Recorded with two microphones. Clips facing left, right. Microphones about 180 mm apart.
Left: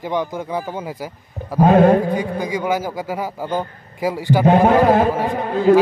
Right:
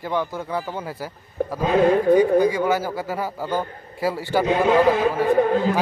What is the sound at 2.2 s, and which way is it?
Speech, 10° left (ahead or behind).